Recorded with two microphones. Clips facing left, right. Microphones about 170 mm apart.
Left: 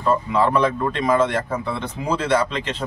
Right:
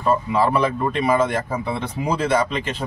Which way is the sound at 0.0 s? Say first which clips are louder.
Even; 10° right (ahead or behind).